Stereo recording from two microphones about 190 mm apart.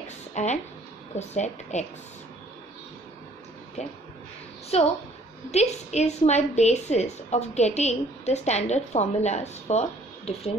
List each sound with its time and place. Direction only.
0.0 s a sound: 40° left (ahead or behind)
1.1 s a woman's voice: 35° left (ahead or behind)
4.7 s a woman's voice: 30° left (ahead or behind)